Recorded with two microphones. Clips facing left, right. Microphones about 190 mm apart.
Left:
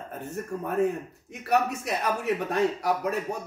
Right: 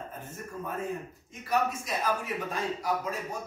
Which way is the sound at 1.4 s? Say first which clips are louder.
Left 4 dB; 70° left (ahead or behind).